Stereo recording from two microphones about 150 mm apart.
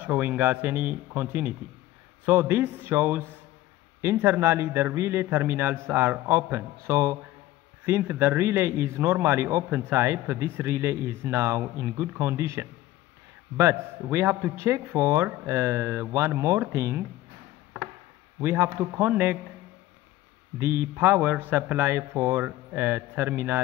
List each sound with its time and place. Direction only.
0.0 s a man's voice: 10° right (ahead or behind)
18.4 s a man's voice: 15° right (ahead or behind)
20.5 s a man's voice: 15° right (ahead or behind)